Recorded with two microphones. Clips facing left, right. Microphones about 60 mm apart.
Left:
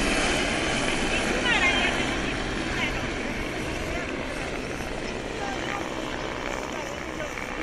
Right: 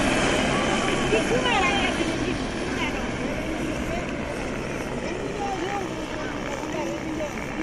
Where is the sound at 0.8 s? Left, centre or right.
Centre.